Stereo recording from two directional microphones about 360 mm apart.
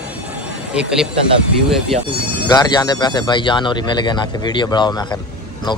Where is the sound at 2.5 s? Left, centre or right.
Centre.